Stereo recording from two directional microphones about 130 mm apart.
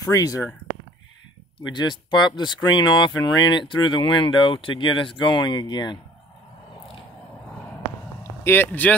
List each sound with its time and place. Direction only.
0.0 s speech: 25° left (ahead or behind)
1.7 s speech: 35° left (ahead or behind)
8.2 s speech: 15° left (ahead or behind)